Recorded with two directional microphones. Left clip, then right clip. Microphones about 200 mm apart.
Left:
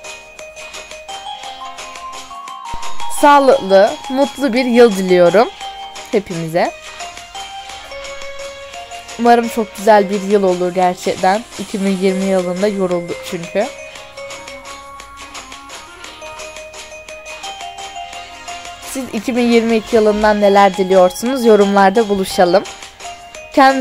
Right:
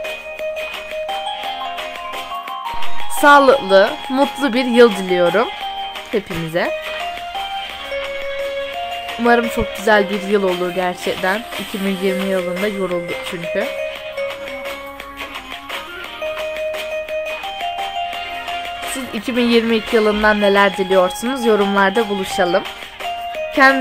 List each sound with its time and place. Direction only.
3.2 s speech: 10° left (ahead or behind)
9.4 s speech: 10° left (ahead or behind)
19.1 s speech: 10° left (ahead or behind)